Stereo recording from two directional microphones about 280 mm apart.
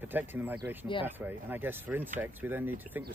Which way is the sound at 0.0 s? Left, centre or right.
Centre.